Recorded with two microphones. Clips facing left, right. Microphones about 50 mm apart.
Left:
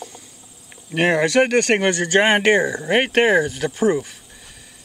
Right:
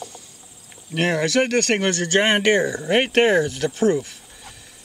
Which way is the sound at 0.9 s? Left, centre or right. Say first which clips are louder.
Left 3 dB; centre.